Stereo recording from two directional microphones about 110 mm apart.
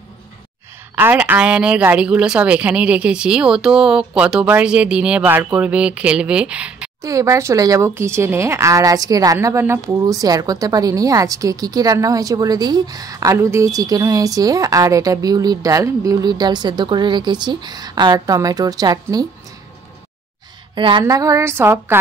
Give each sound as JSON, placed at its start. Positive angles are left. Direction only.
{"t": 0.9, "sound": "speech", "side_deg": -15}
{"t": 7.0, "sound": "a woman's voice", "side_deg": -30}
{"t": 20.7, "sound": "speech", "side_deg": -50}
{"t": 21.0, "sound": "a woman's voice", "side_deg": -30}